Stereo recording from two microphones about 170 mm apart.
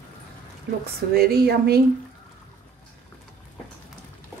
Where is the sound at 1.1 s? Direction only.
65° right (ahead or behind).